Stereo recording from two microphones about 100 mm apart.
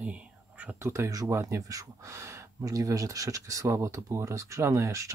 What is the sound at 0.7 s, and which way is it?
Speech, 30° right (ahead or behind).